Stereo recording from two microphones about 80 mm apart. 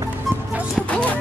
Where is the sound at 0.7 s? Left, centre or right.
Centre.